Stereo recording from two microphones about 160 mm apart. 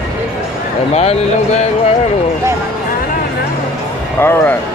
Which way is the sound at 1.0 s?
40° left (ahead or behind).